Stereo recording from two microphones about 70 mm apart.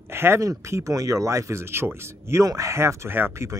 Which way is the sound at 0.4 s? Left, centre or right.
Right.